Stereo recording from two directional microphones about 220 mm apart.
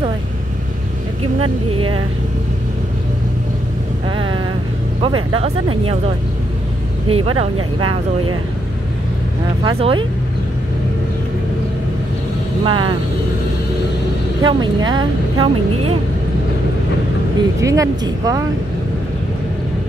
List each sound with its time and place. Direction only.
5.0 s speech: 25° right (ahead or behind)
7.1 s speech: 25° right (ahead or behind)
9.6 s speech: 25° right (ahead or behind)
12.6 s speech: 20° right (ahead or behind)
14.4 s speech: 20° right (ahead or behind)
17.6 s a woman's voice: 15° right (ahead or behind)